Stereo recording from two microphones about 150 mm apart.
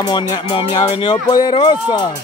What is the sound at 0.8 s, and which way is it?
A man's voice, 35° left (ahead or behind).